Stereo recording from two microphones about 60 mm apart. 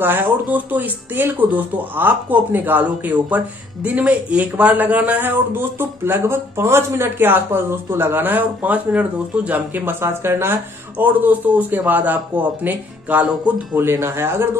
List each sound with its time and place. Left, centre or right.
0.0 s speech: right
10.0 s speech: right
13.7 s speech: right